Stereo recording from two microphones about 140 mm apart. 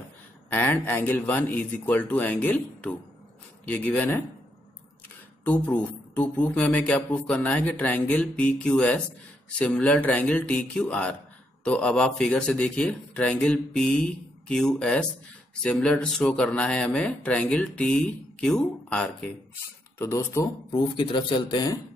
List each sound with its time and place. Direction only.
0.5 s speech: 15° left (ahead or behind)
5.4 s speech: 10° left (ahead or behind)
20.0 s speech: 20° left (ahead or behind)
20.7 s speech: 35° left (ahead or behind)